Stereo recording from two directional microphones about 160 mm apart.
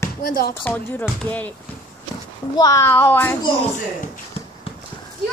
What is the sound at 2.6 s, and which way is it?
Speech, 20° left (ahead or behind).